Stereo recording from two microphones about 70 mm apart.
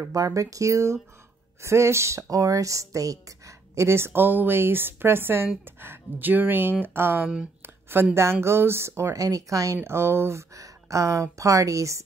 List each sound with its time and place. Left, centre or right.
0.0 s speech: right
9.8 s speech: right
10.5 s speech: right